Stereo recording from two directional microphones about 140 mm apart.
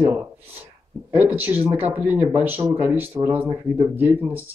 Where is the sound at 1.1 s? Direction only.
15° right (ahead or behind).